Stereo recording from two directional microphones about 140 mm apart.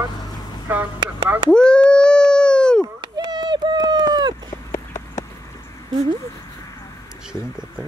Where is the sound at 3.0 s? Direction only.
30° right (ahead or behind).